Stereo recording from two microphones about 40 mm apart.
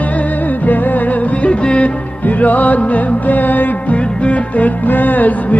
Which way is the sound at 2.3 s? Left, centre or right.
Left.